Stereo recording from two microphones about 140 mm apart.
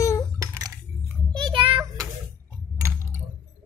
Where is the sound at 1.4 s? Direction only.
40° right (ahead or behind).